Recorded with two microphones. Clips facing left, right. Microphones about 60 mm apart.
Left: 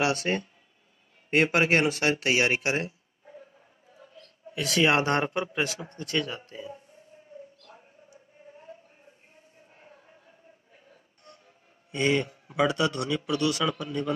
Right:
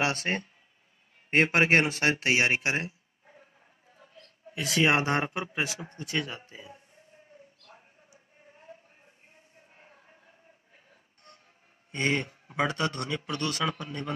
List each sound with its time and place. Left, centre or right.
0.0 s a man's voice: right
4.0 s a sound: right
4.6 s speech: centre
11.3 s music: right
11.9 s a man's voice: right